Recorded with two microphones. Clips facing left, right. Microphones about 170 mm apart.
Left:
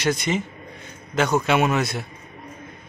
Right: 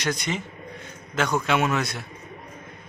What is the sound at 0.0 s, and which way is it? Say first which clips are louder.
Speech: left 5 dB; 5° left (ahead or behind).